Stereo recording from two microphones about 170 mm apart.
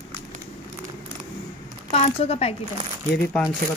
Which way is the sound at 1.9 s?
35° left (ahead or behind).